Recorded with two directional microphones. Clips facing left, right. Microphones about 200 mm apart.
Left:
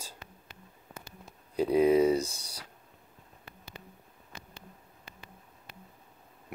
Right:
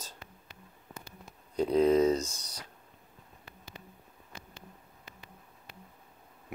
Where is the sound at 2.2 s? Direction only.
30° left (ahead or behind).